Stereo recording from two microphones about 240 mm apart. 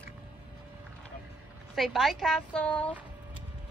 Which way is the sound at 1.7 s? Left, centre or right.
Centre.